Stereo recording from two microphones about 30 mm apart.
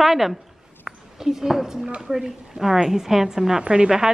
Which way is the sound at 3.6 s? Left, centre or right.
Right.